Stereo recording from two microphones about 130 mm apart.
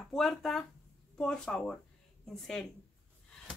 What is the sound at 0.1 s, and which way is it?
Speech, centre (ahead or behind).